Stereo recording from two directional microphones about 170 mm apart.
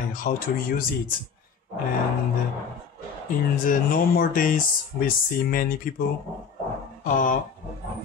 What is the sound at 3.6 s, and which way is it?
Speech, 55° left (ahead or behind).